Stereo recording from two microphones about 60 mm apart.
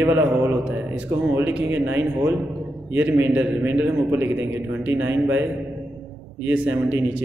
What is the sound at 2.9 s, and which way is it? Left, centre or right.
A man's voice, right.